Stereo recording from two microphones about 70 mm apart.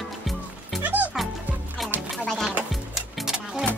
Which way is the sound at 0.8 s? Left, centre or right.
Right.